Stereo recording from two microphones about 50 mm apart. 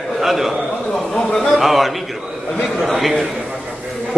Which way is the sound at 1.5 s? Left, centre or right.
Centre.